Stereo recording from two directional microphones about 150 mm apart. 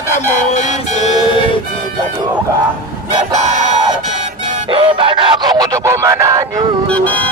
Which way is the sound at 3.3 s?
50° right (ahead or behind).